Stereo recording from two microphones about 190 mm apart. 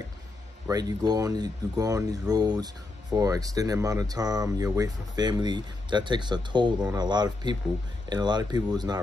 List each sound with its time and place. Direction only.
0.7 s speech: 20° right (ahead or behind)